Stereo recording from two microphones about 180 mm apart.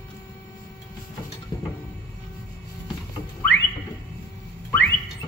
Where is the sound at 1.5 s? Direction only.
20° left (ahead or behind).